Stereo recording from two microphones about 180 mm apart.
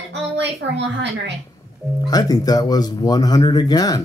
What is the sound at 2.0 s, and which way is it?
Speech, 20° left (ahead or behind).